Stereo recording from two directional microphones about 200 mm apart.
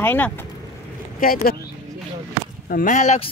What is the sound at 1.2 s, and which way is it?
Speech, 45° left (ahead or behind).